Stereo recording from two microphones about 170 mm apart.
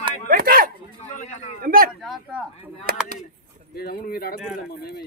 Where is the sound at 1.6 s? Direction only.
60° right (ahead or behind).